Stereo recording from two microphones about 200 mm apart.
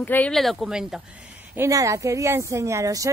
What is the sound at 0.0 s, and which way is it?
Speech, 10° left (ahead or behind).